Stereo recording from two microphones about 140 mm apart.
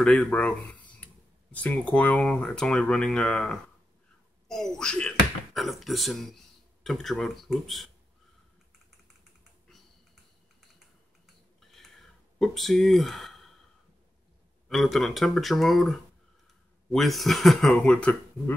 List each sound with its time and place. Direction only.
0.0 s speech: 10° left (ahead or behind)
11.7 s a sound: centre (ahead or behind)
14.7 s speech: centre (ahead or behind)